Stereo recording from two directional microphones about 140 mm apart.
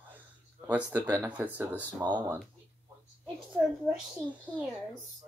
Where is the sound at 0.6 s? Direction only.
15° right (ahead or behind).